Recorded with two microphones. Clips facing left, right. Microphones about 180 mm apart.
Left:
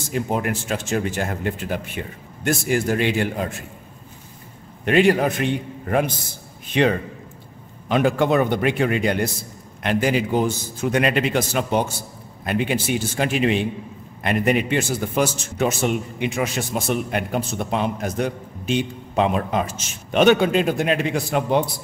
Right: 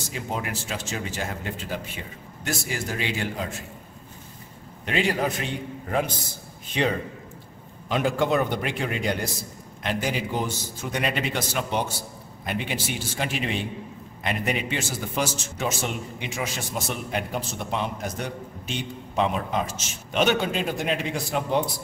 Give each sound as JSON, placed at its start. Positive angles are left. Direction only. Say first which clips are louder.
{"t": 0.1, "sound": "a man's voice", "louder": "left 8 dB", "side_deg": 55}
{"t": 4.8, "sound": "a man's voice", "louder": "left 8 dB", "side_deg": 60}
{"t": 10.9, "sound": "a man's voice", "louder": "left 7 dB", "side_deg": 80}
{"t": 12.4, "sound": "a man's voice", "louder": "left 7 dB", "side_deg": 50}